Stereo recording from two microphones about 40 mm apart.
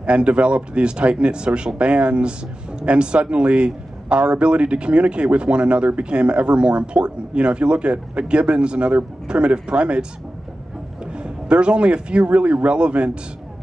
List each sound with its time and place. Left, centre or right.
0.0 s speech: right
11.1 s speech: right